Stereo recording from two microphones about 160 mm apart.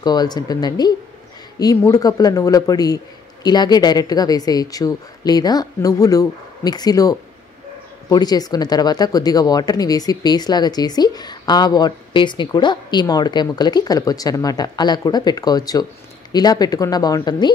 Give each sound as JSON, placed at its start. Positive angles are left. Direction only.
{"t": 0.0, "sound": "speech", "side_deg": 25}